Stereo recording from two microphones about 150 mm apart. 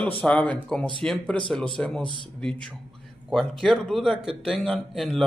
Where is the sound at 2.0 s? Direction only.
35° left (ahead or behind).